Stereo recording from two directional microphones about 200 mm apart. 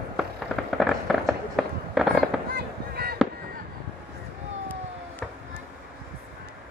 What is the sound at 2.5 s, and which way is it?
Fireworks, 50° right (ahead or behind).